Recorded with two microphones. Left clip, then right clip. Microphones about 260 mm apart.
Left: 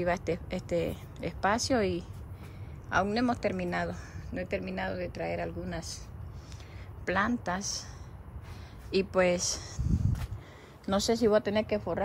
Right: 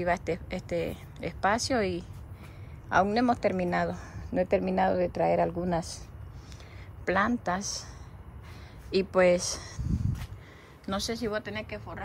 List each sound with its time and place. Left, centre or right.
0.0 s a woman's voice: centre
7.1 s speech: centre
8.9 s speech: centre; by 12.0 s left